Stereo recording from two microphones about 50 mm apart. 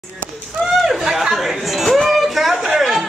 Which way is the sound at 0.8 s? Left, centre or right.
Centre.